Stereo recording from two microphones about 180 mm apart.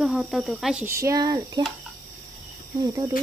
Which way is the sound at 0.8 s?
15° right (ahead or behind).